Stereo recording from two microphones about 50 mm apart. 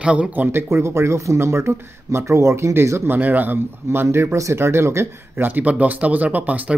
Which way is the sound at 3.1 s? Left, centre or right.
Right.